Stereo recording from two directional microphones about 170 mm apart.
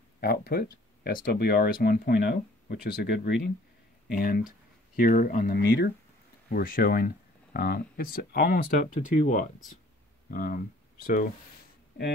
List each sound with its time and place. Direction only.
0.2 s speech: 65° left (ahead or behind)
6.5 s speech: 55° left (ahead or behind)